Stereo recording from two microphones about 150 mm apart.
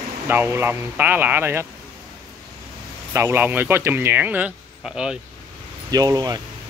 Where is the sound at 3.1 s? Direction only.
15° right (ahead or behind).